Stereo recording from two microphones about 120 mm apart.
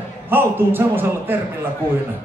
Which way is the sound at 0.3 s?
15° right (ahead or behind).